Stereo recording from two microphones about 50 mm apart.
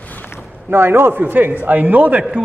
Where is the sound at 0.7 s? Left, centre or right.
Right.